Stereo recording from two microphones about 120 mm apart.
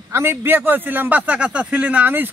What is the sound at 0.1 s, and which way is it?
A man's voice, 20° right (ahead or behind).